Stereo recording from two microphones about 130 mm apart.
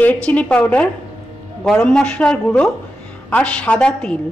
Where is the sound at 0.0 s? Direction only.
10° left (ahead or behind).